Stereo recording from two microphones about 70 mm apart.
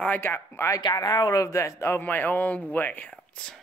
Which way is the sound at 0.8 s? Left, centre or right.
Left.